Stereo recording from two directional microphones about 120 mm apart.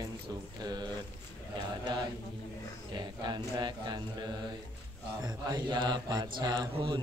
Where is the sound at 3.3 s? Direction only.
35° right (ahead or behind).